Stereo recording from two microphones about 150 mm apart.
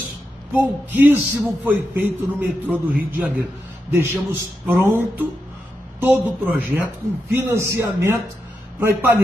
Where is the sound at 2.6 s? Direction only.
15° right (ahead or behind).